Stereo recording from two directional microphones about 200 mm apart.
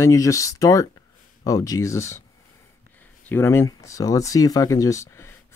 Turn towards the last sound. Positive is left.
turn(degrees=15)  # may be behind; listen again after turning